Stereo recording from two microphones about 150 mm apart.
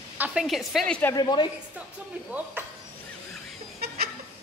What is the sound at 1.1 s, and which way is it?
Speech, 30° left (ahead or behind).